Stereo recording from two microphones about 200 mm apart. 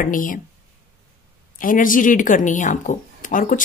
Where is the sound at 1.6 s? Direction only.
40° left (ahead or behind).